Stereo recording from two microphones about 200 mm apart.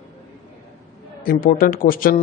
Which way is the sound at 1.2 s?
45° left (ahead or behind).